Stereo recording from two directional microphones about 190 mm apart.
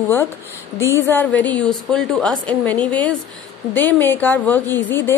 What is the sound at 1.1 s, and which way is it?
A woman's voice, 10° left (ahead or behind).